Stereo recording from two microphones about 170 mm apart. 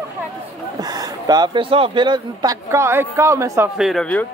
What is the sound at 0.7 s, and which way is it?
Speech, 20° right (ahead or behind).